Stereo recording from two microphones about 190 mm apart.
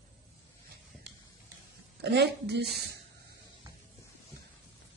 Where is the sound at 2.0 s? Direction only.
60° right (ahead or behind).